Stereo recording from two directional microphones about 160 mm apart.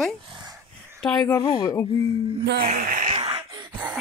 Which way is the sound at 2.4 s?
90° right.